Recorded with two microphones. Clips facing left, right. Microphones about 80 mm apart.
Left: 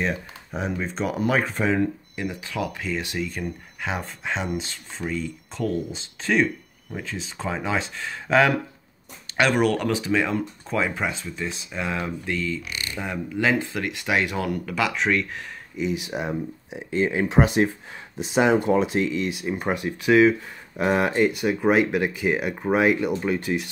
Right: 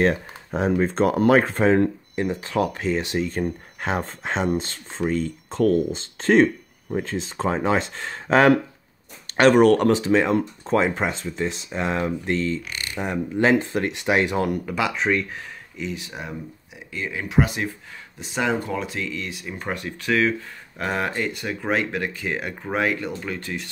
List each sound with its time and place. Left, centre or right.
0.5 s speech: right
1.0 s speech: right
1.3 s speech: right
5.2 s speech: right
6.2 s speech: right
14.7 s speech: centre
15.8 s speech: centre
16.1 s speech: left